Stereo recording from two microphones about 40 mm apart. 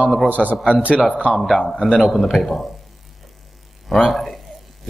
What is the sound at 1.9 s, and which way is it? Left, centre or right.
Speech, centre.